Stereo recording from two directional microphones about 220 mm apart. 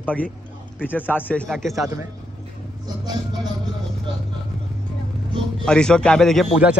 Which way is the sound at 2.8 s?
20° right (ahead or behind).